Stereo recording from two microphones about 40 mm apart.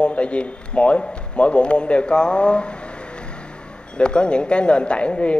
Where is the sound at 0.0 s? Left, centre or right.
Left.